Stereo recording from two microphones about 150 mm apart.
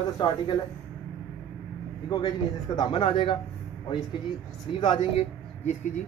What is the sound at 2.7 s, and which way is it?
Speech, 30° left (ahead or behind).